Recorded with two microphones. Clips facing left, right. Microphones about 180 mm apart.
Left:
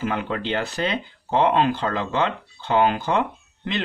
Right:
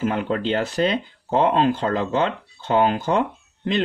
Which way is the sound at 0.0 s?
40° right (ahead or behind).